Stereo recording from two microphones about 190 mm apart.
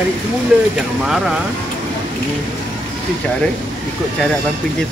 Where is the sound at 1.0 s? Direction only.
Centre (ahead or behind).